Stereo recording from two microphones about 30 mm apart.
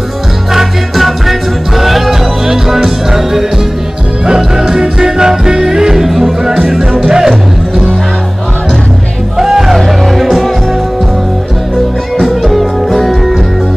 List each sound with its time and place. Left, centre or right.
0.5 s music: centre
9.4 s music: centre
9.8 s music: centre
12.2 s music: centre